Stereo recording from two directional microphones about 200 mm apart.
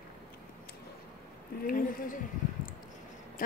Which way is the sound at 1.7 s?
45° left (ahead or behind).